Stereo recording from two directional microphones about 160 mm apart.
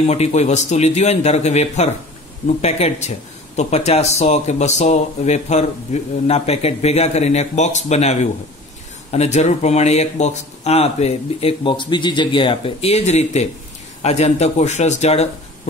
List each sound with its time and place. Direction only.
0.0 s speech: 45° left (ahead or behind)